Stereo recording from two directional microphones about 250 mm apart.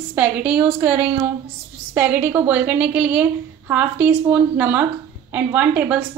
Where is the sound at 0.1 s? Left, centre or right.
Centre.